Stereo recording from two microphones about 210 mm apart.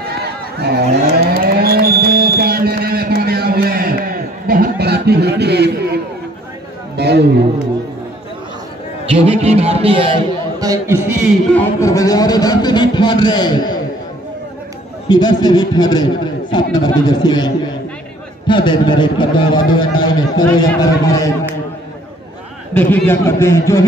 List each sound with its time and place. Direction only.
0.0 s cattle: 50° right (ahead or behind)
4.5 s a sound: 45° right (ahead or behind)
7.0 s a man's voice: 50° right (ahead or behind)
9.1 s a man's voice: 30° right (ahead or behind)
10.6 s a man's voice: 15° right (ahead or behind)
11.4 s a man's voice: 10° left (ahead or behind)
15.0 s a man's voice: 20° left (ahead or behind)
18.5 s a man's voice: 20° left (ahead or behind)
22.8 s a man's voice: 10° left (ahead or behind)